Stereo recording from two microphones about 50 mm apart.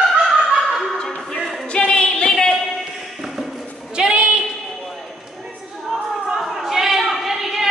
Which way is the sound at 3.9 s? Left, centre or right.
Centre.